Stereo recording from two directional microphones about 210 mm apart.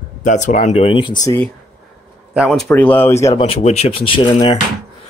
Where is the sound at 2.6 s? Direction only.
10° left (ahead or behind).